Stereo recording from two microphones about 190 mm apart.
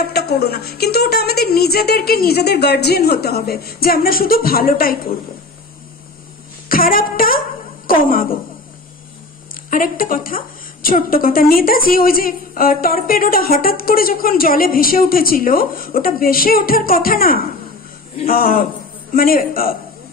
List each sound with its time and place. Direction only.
0.0 s a woman's voice: 55° left (ahead or behind)
6.7 s a woman's voice: 50° left (ahead or behind)
9.7 s a woman's voice: 45° left (ahead or behind)